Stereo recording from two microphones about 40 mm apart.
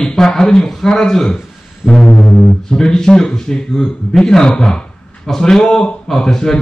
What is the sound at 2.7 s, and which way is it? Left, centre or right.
Speech, centre.